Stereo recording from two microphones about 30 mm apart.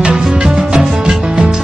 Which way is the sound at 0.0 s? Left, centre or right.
Right.